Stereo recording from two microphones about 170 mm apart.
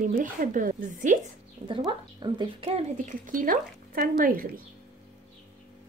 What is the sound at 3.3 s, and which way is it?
Speech, 55° right (ahead or behind).